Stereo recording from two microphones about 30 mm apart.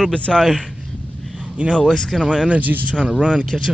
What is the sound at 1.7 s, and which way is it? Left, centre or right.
Speech, centre.